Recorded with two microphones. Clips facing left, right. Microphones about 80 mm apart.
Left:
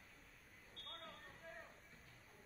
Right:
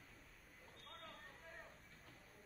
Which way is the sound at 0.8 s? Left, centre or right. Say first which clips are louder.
Left 1 dB; centre.